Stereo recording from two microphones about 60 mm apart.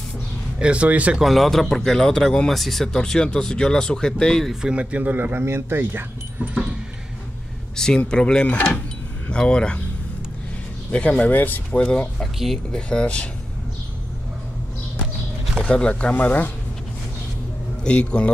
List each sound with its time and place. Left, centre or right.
0.6 s speech: centre
1.2 s a man's voice: centre
4.6 s speech: centre
4.9 s speech: right
7.7 s speech: centre
10.9 s speech: left
11.7 s speech: centre
15.6 s speech: centre
17.8 s speech: centre